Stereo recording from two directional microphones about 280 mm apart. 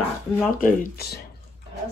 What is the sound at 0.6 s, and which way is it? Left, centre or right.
Speech, left.